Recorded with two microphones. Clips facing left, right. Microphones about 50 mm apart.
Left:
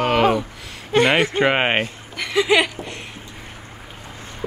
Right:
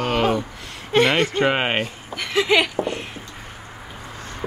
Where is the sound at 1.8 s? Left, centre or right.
Centre.